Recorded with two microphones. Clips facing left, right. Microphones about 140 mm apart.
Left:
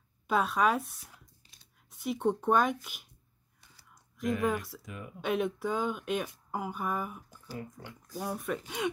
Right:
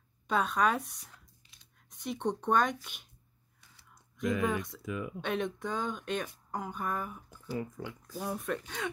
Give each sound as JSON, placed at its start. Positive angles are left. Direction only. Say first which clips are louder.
{"t": 0.3, "sound": "speech", "louder": "left 1 dB", "side_deg": 0}
{"t": 1.4, "sound": "a sound", "louder": "left 2 dB", "side_deg": 35}
{"t": 1.9, "sound": "speech", "louder": "left 4 dB", "side_deg": 5}
{"t": 4.2, "sound": "speech", "louder": "left 1 dB", "side_deg": 0}
{"t": 8.8, "sound": "speech", "louder": "left 5 dB", "side_deg": 15}